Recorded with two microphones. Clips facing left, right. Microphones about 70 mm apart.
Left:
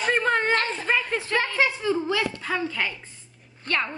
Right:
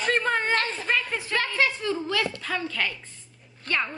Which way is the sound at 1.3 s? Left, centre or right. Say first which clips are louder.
Left 1 dB; centre.